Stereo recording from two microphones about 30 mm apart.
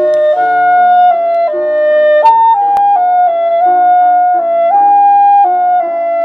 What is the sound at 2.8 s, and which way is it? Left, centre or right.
Music, right.